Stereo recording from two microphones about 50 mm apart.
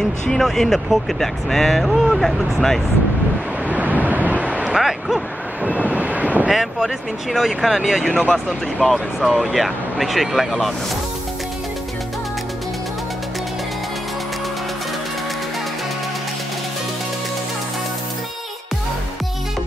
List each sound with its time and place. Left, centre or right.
0.3 s speech: centre
3.6 s waves: right
4.6 s speech: centre
5.6 s speech: right
6.5 s speech: centre